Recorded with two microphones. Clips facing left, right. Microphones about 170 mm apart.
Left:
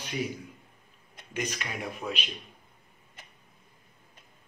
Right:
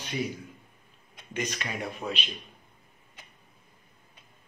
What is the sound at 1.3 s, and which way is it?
Speech, 10° left (ahead or behind).